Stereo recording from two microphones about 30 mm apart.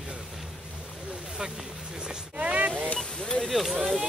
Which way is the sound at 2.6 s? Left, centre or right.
Right.